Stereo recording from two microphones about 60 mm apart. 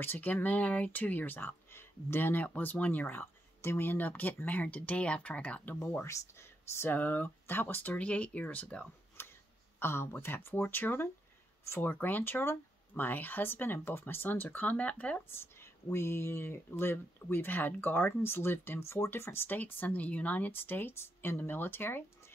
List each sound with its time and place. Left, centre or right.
0.0 s speech: left
5.8 s speech: left
6.0 s speech: left
6.9 s speech: left
9.2 s a sound: left
9.8 s speech: left
11.6 s speech: left
11.9 s speech: left
15.2 s speech: left